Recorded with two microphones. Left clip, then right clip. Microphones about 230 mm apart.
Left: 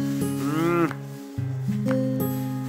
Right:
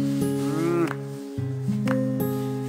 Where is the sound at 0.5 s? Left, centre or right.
Centre.